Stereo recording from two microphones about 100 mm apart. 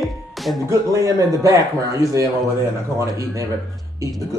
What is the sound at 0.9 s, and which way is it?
Speech, 35° right (ahead or behind).